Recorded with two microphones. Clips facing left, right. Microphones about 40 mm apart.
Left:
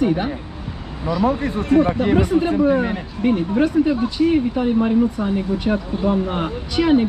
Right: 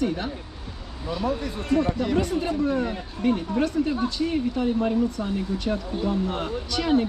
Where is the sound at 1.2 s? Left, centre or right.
Left.